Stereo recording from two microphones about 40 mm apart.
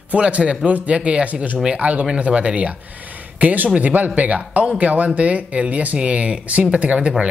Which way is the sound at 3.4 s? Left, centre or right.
Right.